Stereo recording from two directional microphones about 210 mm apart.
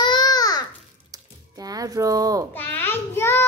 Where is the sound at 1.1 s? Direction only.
15° right (ahead or behind).